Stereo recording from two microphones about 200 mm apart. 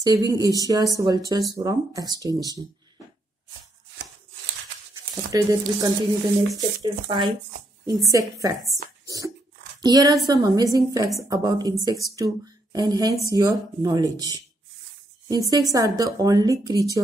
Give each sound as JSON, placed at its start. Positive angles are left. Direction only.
{"t": 0.0, "sound": "a woman's voice", "side_deg": -20}
{"t": 5.3, "sound": "a woman's voice", "side_deg": -15}
{"t": 9.0, "sound": "a sound", "side_deg": -15}
{"t": 9.8, "sound": "a woman's voice", "side_deg": -20}